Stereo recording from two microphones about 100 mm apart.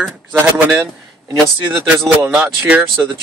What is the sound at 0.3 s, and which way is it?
Speech, 20° right (ahead or behind).